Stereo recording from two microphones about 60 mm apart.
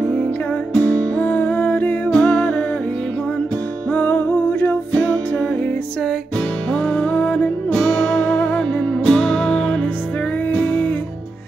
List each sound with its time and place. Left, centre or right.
0.7 s music: left
2.0 s music: centre
3.9 s music: left
4.9 s music: centre
6.7 s music: left
7.7 s music: centre